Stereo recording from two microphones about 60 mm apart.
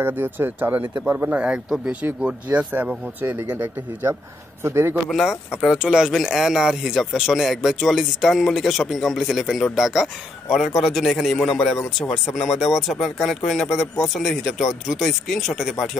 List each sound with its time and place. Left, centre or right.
0.0 s a man's voice: right; by 2.0 s centre
3.2 s a man's voice: right
5.1 s speech: centre